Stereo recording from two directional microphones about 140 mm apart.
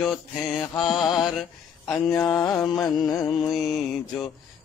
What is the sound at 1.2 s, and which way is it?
Speech, centre (ahead or behind).